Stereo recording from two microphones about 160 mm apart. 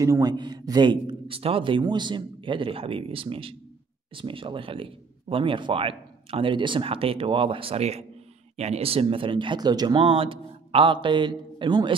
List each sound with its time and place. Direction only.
0.0 s speech: 20° right (ahead or behind)